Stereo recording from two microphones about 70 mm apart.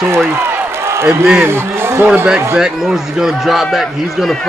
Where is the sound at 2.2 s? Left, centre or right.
Centre.